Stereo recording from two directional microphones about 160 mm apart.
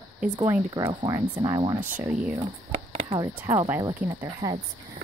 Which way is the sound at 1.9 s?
5° right (ahead or behind).